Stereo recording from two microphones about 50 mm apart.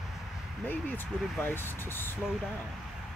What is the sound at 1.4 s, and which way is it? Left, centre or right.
Speech, left.